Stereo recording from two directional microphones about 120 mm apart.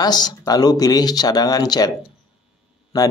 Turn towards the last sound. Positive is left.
turn(degrees=30)  # may be behind; listen again after turning